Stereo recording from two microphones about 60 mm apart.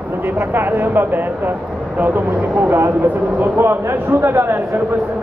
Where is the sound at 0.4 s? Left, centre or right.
Right.